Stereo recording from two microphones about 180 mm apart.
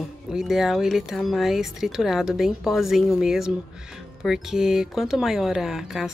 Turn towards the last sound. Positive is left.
turn(degrees=0)  # may be behind; listen again after turning